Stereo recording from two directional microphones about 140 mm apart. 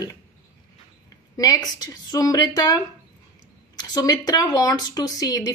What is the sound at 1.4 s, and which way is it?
Speech, 30° left (ahead or behind).